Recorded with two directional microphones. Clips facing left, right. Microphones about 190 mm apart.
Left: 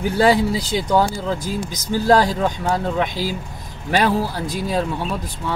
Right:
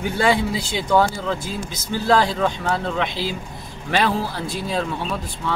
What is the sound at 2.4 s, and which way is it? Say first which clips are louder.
Speech: left 1 dB; 15° left (ahead or behind).